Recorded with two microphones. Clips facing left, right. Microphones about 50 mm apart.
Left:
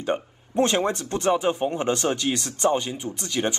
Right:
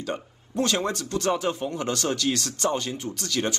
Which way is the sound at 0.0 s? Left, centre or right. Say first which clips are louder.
Left 5 dB; left.